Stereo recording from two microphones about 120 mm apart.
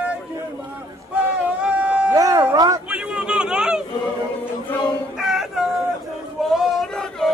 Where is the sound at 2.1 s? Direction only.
30° right (ahead or behind).